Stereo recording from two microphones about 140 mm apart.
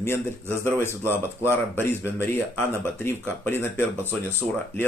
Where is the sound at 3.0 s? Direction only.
15° left (ahead or behind).